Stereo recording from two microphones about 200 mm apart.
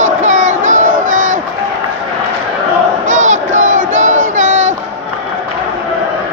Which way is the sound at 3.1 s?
40° right (ahead or behind).